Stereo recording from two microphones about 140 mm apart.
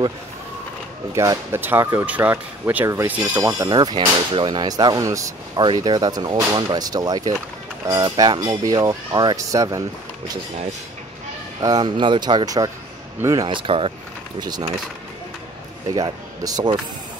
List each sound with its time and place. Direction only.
1.1 s speech: 25° right (ahead or behind)
11.6 s speech: 30° right (ahead or behind)
14.4 s speech: 30° right (ahead or behind)
15.9 s speech: 25° right (ahead or behind)